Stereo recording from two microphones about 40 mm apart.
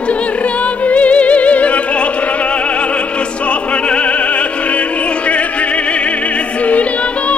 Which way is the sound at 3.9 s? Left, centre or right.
Left.